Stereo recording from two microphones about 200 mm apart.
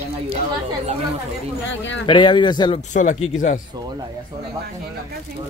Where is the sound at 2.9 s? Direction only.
40° left (ahead or behind).